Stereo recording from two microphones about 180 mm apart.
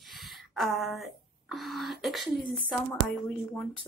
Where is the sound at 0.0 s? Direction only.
Centre (ahead or behind).